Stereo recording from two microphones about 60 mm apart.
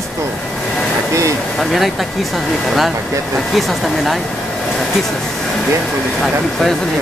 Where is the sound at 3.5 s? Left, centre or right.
Centre.